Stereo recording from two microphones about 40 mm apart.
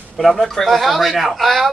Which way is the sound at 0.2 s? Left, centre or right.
Centre.